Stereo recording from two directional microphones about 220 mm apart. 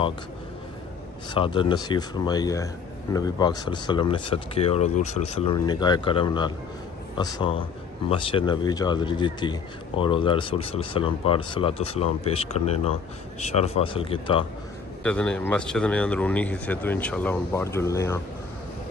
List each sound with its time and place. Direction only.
1.3 s speech: 20° left (ahead or behind)
15.0 s speech: 5° left (ahead or behind)